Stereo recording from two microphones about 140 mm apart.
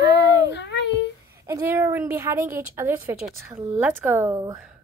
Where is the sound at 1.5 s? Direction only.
20° right (ahead or behind).